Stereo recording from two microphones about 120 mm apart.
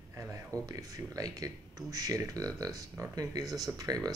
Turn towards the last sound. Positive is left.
turn(degrees=-30)  # may be behind; listen again after turning